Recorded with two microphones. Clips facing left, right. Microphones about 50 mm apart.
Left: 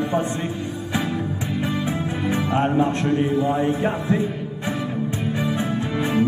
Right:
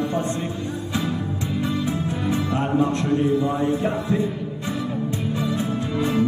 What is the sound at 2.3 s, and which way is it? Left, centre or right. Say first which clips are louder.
Music: left 3 dB; left.